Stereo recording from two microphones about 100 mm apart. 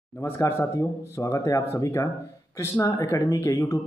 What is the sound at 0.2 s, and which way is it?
A man's voice, 25° left (ahead or behind).